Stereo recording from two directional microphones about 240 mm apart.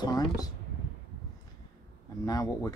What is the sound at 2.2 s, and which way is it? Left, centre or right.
Speech, centre.